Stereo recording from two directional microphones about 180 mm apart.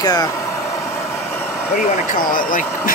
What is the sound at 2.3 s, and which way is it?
Speech, 50° left (ahead or behind).